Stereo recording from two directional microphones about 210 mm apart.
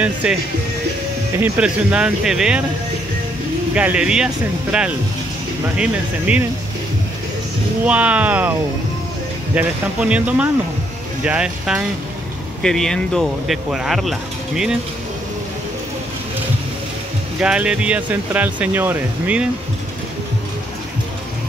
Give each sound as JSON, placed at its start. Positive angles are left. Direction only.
{"t": 0.0, "sound": "speech", "side_deg": -5}
{"t": 1.4, "sound": "speech", "side_deg": -5}
{"t": 3.7, "sound": "speech", "side_deg": -5}
{"t": 7.8, "sound": "speech", "side_deg": -5}
{"t": 9.6, "sound": "speech", "side_deg": -5}
{"t": 17.4, "sound": "speech", "side_deg": -5}